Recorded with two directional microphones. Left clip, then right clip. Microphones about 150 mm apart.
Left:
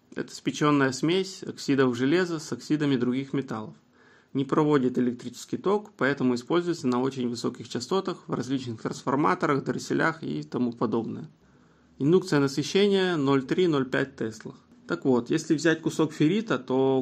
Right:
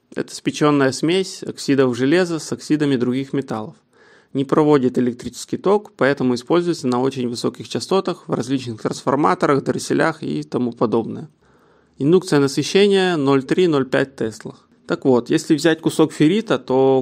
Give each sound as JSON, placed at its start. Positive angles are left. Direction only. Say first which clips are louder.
{"t": 0.1, "sound": "speech", "louder": "right 8 dB", "side_deg": -50}